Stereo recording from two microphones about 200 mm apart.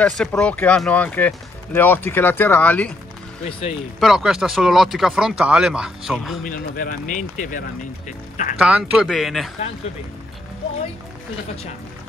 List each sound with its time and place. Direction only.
0.0 s speech: 5° left (ahead or behind)
3.4 s speech: 25° left (ahead or behind)
4.0 s speech: centre (ahead or behind)
6.4 s speech: 45° left (ahead or behind)
8.5 s speech: 5° right (ahead or behind)